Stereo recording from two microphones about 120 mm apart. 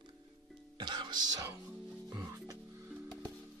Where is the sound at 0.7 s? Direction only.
40° right (ahead or behind).